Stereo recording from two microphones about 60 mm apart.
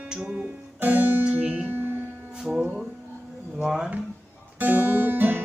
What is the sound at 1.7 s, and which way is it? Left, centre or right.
Music, right.